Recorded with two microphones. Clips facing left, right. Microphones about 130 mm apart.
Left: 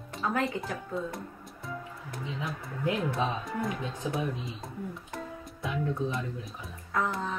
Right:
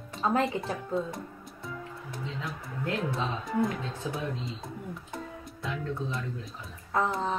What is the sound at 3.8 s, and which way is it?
Speech, 15° left (ahead or behind).